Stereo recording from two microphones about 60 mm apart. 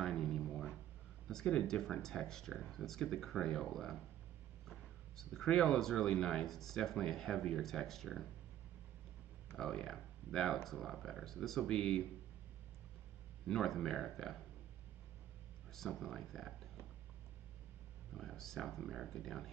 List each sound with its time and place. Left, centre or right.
0.0 s a sound: centre
1.2 s speech: centre
3.7 s speech: centre
9.6 s speech: centre
13.5 s speech: centre
15.7 s speech: centre
18.1 s speech: centre